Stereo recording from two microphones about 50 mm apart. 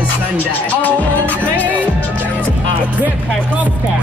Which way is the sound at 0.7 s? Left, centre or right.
Left.